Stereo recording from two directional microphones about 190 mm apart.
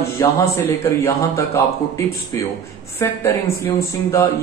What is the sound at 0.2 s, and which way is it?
Speech, 15° left (ahead or behind).